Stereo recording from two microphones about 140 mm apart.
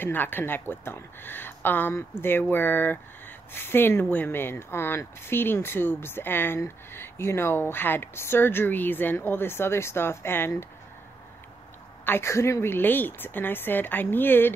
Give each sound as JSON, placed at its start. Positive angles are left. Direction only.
{"t": 0.0, "sound": "speech", "side_deg": 15}
{"t": 12.0, "sound": "speech", "side_deg": 15}